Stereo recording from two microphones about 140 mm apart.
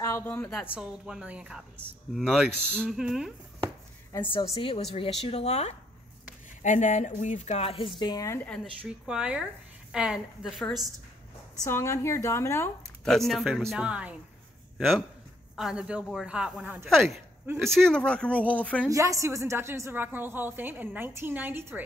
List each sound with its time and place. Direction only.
0.0 s a woman's voice: 15° left (ahead or behind)
0.5 s speech: 5° right (ahead or behind)
4.2 s speech: 35° left (ahead or behind)
6.6 s a woman's voice: 65° left (ahead or behind); by 7.9 s 45° left (ahead or behind)
8.0 s speech: 25° left (ahead or behind)
8.4 s speech: 5° left (ahead or behind)
8.8 s speech: 5° right (ahead or behind)
11.6 s speech: 20° left (ahead or behind)
13.0 s speech: 5° left (ahead or behind)
15.5 s speech: 5° right (ahead or behind)
18.9 s a woman's voice: 25° right (ahead or behind)